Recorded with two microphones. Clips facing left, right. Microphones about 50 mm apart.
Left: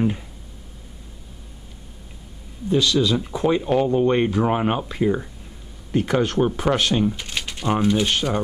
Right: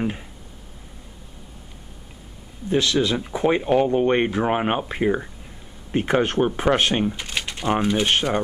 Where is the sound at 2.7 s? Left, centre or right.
Right.